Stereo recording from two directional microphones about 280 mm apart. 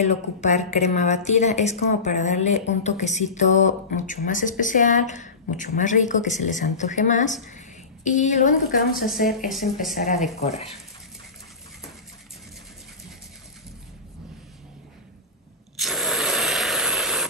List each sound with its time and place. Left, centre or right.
0.0 s a woman's voice: left
8.9 s speech: centre
9.9 s speech: left
15.8 s a sound: centre